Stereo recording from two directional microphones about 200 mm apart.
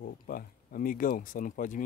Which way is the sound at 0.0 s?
45° left (ahead or behind).